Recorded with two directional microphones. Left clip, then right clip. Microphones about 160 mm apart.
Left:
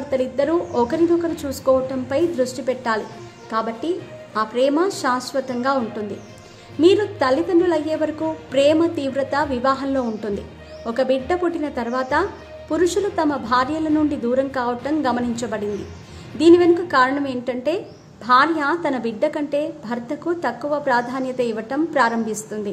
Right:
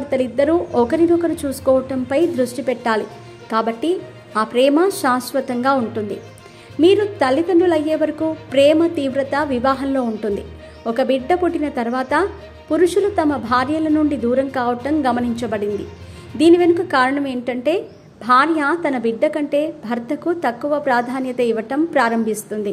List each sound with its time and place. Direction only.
0.1 s a woman's voice: 15° right (ahead or behind)